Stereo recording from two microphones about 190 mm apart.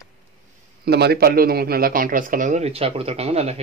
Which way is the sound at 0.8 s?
60° right (ahead or behind).